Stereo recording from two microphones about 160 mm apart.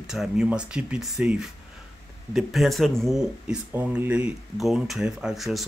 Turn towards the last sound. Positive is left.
turn(degrees=0)  # may be behind; listen again after turning